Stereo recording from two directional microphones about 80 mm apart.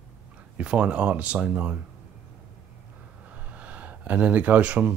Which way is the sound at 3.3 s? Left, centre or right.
Centre.